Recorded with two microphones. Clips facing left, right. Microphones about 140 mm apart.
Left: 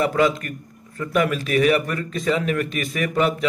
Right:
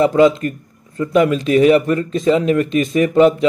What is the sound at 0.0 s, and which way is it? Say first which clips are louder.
A man's voice: right 7 dB; 25° right (ahead or behind).